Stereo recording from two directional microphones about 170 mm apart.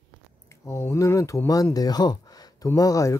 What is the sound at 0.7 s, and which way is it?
Speech, 15° left (ahead or behind).